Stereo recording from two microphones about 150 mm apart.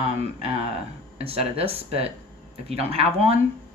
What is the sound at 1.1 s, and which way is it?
Speech, 40° right (ahead or behind).